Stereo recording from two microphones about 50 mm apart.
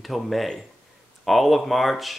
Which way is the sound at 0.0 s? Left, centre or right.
Centre.